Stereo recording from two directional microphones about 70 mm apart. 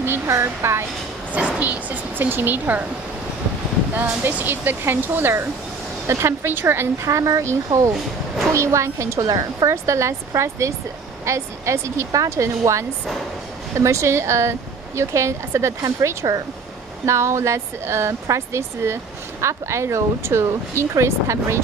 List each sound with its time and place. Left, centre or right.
0.0 s speech: right
1.3 s speech: right
3.9 s speech: right
9.2 s speech: right
9.7 s speech: right